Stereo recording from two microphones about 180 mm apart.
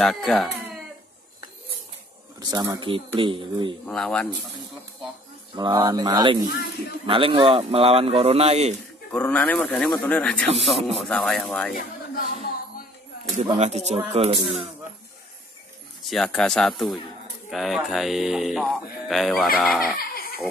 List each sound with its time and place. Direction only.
0.0 s speech: 5° left (ahead or behind)
2.4 s speech: 20° right (ahead or behind)
3.8 s speech: 5° left (ahead or behind)
5.5 s speech: 25° right (ahead or behind)
9.1 s speech: 5° left (ahead or behind)
13.4 s speech: 35° right (ahead or behind)
16.1 s speech: centre (ahead or behind)